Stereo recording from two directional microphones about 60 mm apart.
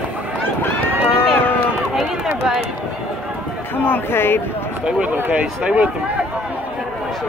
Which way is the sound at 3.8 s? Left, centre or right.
Left.